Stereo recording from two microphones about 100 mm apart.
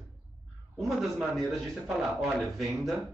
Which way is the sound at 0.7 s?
Centre (ahead or behind).